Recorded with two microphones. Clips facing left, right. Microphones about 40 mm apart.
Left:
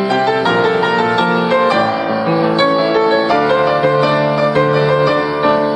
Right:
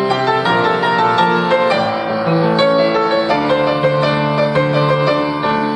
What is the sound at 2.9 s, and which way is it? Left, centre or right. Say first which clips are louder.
Music: left 2 dB; centre.